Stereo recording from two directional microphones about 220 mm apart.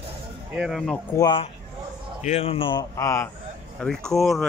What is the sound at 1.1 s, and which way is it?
Speech, 20° left (ahead or behind).